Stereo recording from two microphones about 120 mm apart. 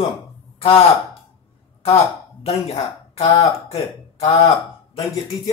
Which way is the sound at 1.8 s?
55° left (ahead or behind).